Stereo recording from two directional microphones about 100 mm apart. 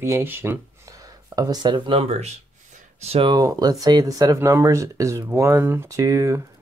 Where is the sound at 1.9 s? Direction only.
90° right.